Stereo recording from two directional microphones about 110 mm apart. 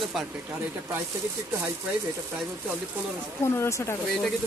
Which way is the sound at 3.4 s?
25° left (ahead or behind).